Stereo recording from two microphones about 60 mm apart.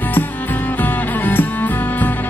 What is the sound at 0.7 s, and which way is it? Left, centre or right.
Music, left.